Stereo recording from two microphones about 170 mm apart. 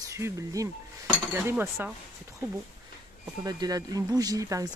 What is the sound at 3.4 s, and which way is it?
Speech, 20° right (ahead or behind).